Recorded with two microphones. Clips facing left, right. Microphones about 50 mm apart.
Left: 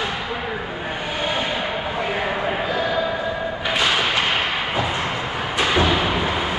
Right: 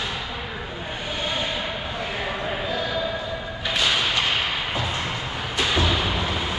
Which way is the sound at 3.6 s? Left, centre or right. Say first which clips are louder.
Left 2 dB; left.